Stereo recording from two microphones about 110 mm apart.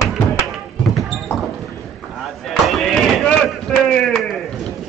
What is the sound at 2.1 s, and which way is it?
Chop, centre (ahead or behind).